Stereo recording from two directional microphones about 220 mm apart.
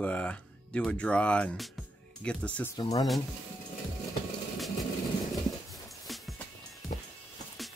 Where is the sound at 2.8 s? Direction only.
15° left (ahead or behind).